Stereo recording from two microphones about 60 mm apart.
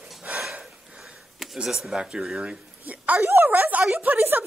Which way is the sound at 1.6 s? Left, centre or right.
Centre.